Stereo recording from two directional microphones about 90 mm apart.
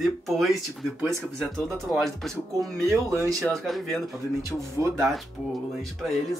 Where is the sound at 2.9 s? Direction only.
35° right (ahead or behind).